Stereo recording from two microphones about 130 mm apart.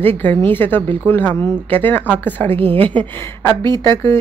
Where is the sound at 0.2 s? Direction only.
15° left (ahead or behind).